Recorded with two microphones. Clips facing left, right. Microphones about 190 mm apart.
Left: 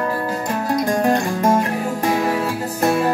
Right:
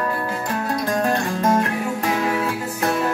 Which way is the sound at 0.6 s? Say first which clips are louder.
Left 4 dB; 20° left (ahead or behind).